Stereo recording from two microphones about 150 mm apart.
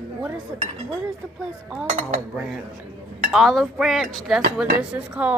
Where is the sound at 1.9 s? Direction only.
55° right (ahead or behind).